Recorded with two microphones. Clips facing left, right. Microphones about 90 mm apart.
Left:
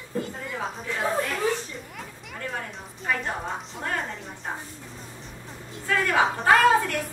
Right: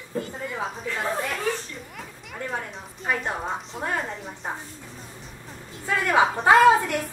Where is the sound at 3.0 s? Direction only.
5° right (ahead or behind).